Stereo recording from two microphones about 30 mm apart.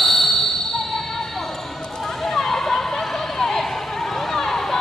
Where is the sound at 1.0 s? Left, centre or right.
Centre.